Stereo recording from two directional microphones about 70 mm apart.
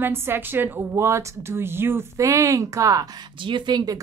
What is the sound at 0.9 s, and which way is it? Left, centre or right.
Speech, right.